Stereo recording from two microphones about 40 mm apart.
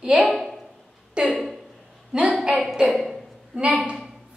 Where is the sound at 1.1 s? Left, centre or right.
Right.